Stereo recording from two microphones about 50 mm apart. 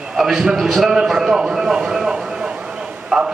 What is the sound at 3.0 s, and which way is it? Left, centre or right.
Clip-clop, centre.